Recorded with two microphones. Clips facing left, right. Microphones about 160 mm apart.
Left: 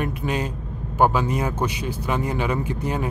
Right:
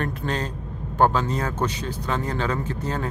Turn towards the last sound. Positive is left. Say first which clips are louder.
# left 2 dB
turn(degrees=15)  # may be behind; listen again after turning